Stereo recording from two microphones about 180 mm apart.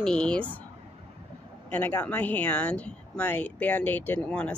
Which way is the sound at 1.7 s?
10° left (ahead or behind).